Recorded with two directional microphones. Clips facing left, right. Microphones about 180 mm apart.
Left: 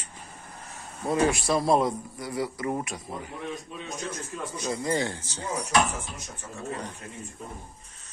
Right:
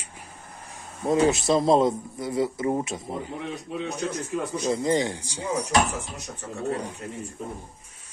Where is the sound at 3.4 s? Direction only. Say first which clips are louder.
Right 5 dB; 70° right (ahead or behind).